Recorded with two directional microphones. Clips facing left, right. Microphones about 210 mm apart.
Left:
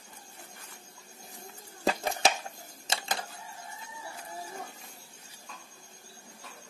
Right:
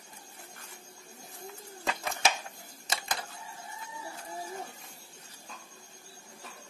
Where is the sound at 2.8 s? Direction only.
25° left (ahead or behind).